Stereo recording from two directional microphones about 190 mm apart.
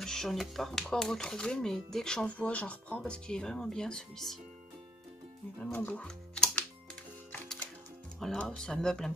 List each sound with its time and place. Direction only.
0.0 s speech: centre (ahead or behind)
5.6 s speech: 10° left (ahead or behind)
8.2 s speech: centre (ahead or behind)